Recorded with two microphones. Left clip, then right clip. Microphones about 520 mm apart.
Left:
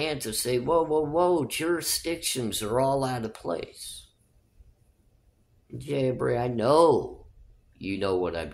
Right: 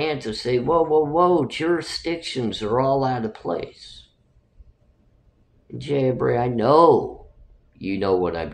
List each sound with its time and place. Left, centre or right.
0.0 s speech: left
5.8 s speech: left